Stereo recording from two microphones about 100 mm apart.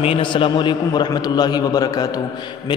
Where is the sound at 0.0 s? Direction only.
60° left (ahead or behind); by 2.2 s 40° left (ahead or behind).